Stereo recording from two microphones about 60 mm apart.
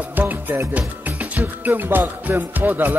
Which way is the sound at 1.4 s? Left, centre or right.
Right.